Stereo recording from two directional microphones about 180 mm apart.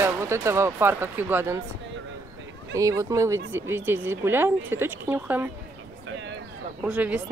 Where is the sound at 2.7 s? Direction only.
20° right (ahead or behind).